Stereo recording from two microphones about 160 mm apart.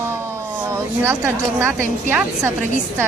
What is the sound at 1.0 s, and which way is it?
A woman's voice, 15° right (ahead or behind).